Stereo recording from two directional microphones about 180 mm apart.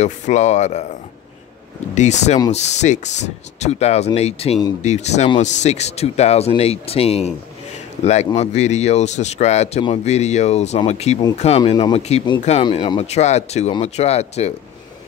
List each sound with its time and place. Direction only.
0.0 s speech: 40° left (ahead or behind)
2.0 s speech: 40° left (ahead or behind)